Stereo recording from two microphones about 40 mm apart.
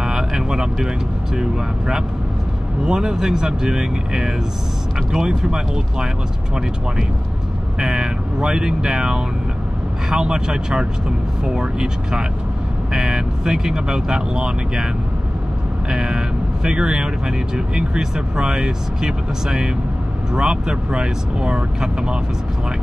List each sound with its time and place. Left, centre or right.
0.0 s a sound: centre
1.3 s speech: centre
7.8 s speech: centre
15.9 s speech: centre